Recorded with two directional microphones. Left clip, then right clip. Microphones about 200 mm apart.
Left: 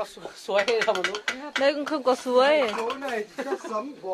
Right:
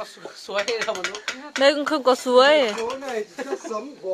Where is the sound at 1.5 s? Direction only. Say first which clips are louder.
Right 6 dB; 20° right (ahead or behind).